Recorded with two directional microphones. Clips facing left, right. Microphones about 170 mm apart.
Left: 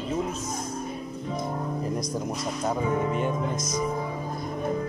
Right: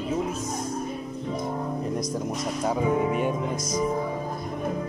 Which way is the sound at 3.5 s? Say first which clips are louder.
Right 1 dB; 30° right (ahead or behind).